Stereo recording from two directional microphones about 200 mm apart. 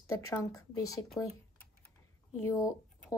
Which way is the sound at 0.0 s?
15° left (ahead or behind).